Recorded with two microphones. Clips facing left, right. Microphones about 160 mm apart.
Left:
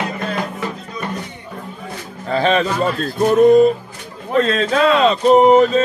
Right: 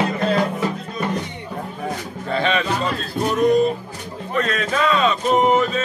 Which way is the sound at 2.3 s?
40° left (ahead or behind).